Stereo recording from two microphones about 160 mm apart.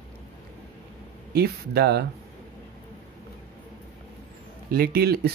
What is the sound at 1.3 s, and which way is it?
Speech, 80° right.